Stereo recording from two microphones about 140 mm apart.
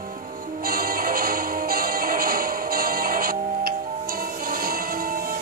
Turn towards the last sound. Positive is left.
turn(degrees=-90)